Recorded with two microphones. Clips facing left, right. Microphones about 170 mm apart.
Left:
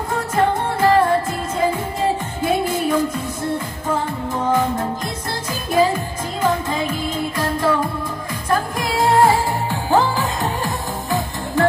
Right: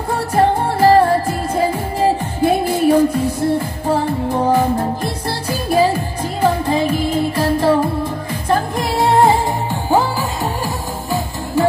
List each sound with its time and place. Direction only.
0.1 s music: 35° right (ahead or behind); by 10.0 s 15° right (ahead or behind)